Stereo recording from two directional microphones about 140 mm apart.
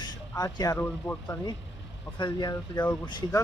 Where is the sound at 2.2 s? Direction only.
30° left (ahead or behind).